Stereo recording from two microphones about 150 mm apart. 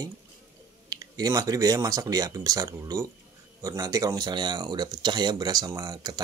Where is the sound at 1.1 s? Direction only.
25° right (ahead or behind).